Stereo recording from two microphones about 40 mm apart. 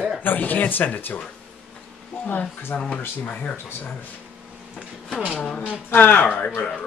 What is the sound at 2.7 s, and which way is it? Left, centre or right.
Speech, left.